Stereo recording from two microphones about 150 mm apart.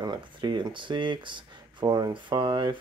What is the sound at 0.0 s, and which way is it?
Speech, 30° right (ahead or behind).